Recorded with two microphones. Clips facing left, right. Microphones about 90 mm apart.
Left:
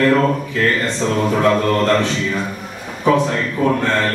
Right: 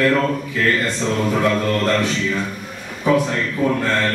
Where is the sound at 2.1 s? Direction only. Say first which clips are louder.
Left 1 dB; 5° left (ahead or behind).